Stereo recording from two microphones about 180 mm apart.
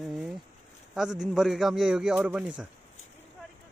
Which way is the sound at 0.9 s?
5° right (ahead or behind).